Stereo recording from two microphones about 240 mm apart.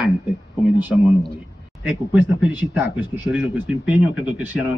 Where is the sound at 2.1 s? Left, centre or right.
Centre.